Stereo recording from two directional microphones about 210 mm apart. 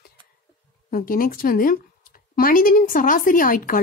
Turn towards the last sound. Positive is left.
turn(degrees=40)  # may be behind; listen again after turning